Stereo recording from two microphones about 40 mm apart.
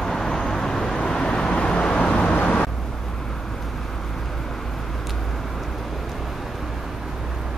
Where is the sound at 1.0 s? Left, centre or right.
Left.